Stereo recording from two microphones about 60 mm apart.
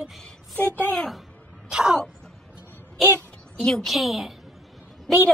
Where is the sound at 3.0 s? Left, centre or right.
Centre.